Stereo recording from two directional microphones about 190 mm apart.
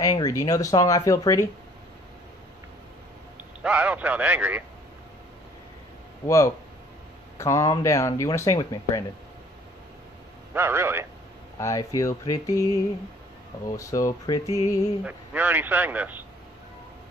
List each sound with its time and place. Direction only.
0.0 s speech: 20° left (ahead or behind)
3.6 s a man's voice: 5° right (ahead or behind)
6.2 s speech: 15° left (ahead or behind)
10.5 s a man's voice: 15° right (ahead or behind)
11.5 s speech: 15° left (ahead or behind)
13.7 s speech: 15° left (ahead or behind)
15.0 s a man's voice: 10° right (ahead or behind)